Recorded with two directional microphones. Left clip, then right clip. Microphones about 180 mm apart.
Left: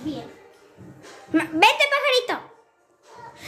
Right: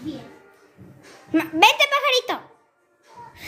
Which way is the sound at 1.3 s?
15° right (ahead or behind).